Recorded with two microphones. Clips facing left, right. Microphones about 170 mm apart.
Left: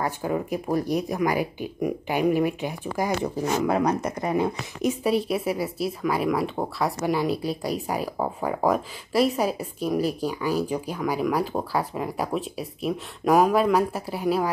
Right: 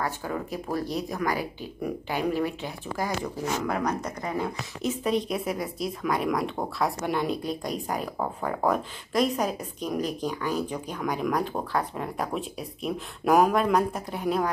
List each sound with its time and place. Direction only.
0.0 s speech: 15° left (ahead or behind)
3.5 s speech: 25° left (ahead or behind); by 14.5 s 5° left (ahead or behind)